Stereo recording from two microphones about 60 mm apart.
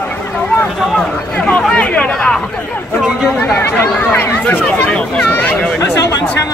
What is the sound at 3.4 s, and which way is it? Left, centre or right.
Speech, left.